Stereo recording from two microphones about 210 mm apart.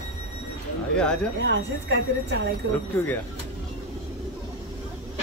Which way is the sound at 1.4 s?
55° right (ahead or behind).